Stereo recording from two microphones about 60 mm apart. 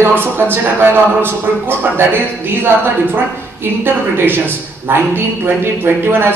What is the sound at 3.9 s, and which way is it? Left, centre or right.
Speech, right.